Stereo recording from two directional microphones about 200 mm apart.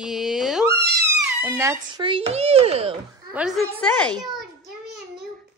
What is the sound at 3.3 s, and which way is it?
Speech, centre (ahead or behind).